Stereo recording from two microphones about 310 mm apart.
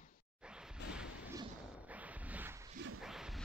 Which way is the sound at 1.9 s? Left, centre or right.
Centre.